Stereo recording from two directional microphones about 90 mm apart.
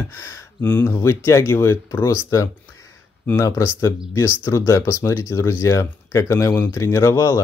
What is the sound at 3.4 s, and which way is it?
Speech, 35° left (ahead or behind).